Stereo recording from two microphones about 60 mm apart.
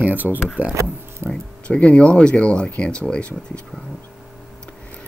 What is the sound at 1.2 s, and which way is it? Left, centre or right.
Speech, centre.